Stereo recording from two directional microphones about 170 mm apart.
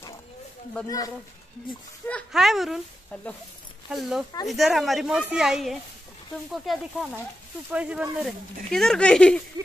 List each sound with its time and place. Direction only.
0.8 s speech: 20° left (ahead or behind)
2.0 s speech: centre (ahead or behind)